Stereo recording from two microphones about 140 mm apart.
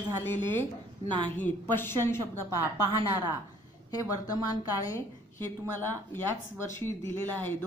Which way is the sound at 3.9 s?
25° left (ahead or behind).